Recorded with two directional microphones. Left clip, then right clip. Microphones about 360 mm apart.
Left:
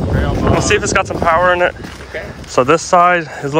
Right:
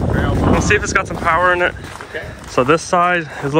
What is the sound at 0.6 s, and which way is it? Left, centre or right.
Speech, centre.